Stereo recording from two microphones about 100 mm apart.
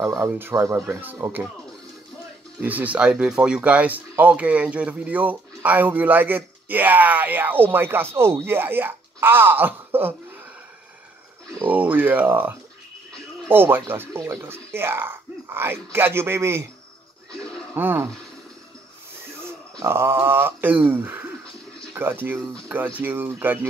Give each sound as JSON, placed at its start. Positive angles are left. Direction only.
{"t": 0.3, "sound": "speech", "side_deg": -25}
{"t": 2.6, "sound": "speech", "side_deg": -15}
{"t": 11.6, "sound": "speech", "side_deg": -15}
{"t": 17.7, "sound": "speech", "side_deg": -20}
{"t": 19.8, "sound": "speech", "side_deg": -25}